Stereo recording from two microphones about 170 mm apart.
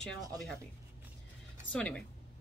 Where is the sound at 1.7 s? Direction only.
5° left (ahead or behind).